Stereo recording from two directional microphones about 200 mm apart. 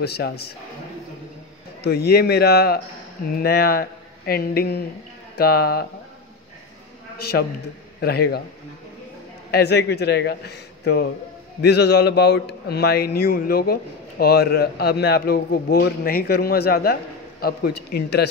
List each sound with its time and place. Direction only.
0.0 s a man's voice: 55° left (ahead or behind)
1.8 s a man's voice: 55° left (ahead or behind)
7.2 s a man's voice: 50° left (ahead or behind)
9.5 s a man's voice: 55° left (ahead or behind)